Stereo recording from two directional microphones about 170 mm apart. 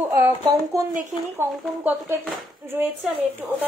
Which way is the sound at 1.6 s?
Centre (ahead or behind).